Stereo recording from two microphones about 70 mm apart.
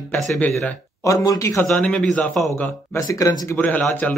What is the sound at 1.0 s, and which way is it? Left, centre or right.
Speech, left.